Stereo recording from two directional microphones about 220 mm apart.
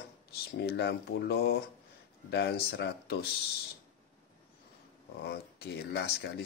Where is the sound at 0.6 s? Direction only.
50° left (ahead or behind).